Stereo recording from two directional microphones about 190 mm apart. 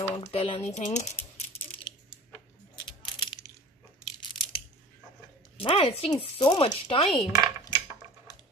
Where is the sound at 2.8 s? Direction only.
25° left (ahead or behind).